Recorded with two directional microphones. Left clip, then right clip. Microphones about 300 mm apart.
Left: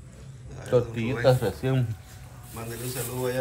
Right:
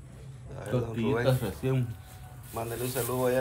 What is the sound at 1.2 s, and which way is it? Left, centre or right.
Speech, left.